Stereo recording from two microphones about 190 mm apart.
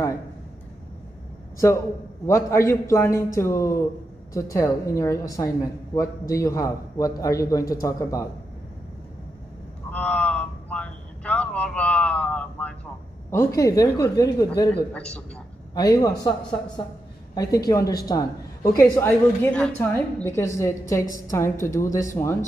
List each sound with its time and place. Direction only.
2.2 s a man's voice: 15° left (ahead or behind)
9.8 s a sound: 5° left (ahead or behind)
13.3 s a man's voice: 15° left (ahead or behind)
14.9 s a man's voice: 5° left (ahead or behind)
15.7 s a woman's voice: 20° left (ahead or behind)